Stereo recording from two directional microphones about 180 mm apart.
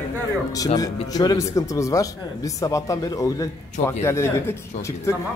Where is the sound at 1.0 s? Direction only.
20° left (ahead or behind).